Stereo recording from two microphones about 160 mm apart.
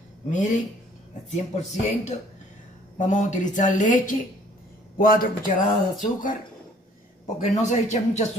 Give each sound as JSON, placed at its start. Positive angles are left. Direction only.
{"t": 1.3, "sound": "speech", "side_deg": 45}
{"t": 7.3, "sound": "speech", "side_deg": 50}